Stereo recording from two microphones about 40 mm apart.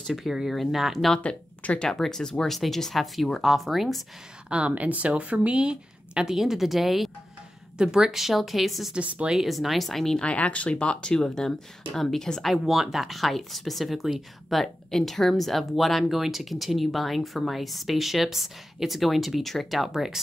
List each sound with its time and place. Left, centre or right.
0.2 s speech: centre
1.2 s speech: left
1.9 s speech: centre
4.5 s speech: right
6.2 s speech: centre
7.7 s speech: centre
8.9 s speech: right
9.3 s speech: centre
10.3 s speech: left; by 12.4 s centre
12.4 s speech: centre